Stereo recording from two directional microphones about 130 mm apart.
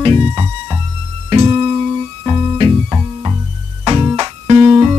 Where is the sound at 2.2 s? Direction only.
40° right (ahead or behind).